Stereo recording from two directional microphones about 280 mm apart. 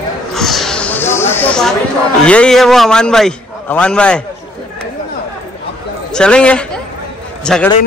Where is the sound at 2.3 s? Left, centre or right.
Centre.